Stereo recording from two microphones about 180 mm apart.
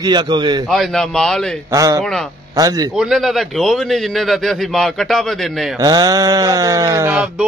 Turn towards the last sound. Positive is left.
turn(degrees=-5)  # may be behind; listen again after turning